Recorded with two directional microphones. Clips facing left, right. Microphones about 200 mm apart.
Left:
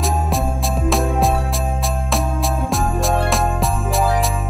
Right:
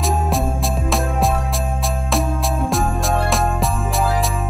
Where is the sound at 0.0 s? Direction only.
Centre (ahead or behind).